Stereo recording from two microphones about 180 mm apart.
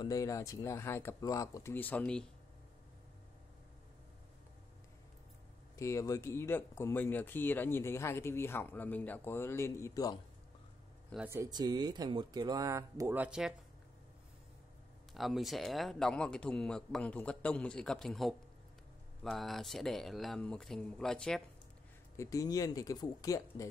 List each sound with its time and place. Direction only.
0.0 s speech: 20° left (ahead or behind)
5.8 s speech: 15° left (ahead or behind)
11.2 s speech: 15° right (ahead or behind)
15.1 s a man's voice: centre (ahead or behind)
22.1 s speech: 15° left (ahead or behind)